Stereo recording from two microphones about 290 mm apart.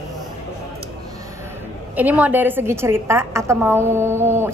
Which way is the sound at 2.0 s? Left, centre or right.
Centre.